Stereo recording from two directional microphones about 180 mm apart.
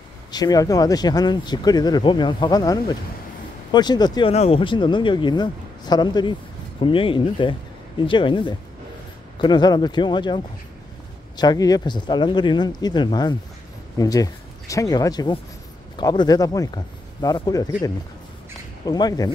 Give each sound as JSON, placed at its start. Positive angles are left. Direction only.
{"t": 0.3, "sound": "speech", "side_deg": 20}
{"t": 4.3, "sound": "speech", "side_deg": 35}